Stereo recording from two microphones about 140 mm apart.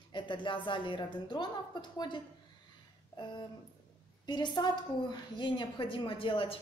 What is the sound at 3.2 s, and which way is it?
A woman's voice, 35° left (ahead or behind).